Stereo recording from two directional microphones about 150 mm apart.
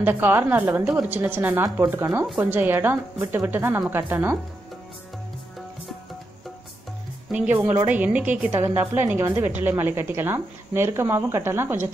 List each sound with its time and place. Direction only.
0.0 s a woman's voice: 15° right (ahead or behind)
7.2 s a woman's voice: 10° right (ahead or behind)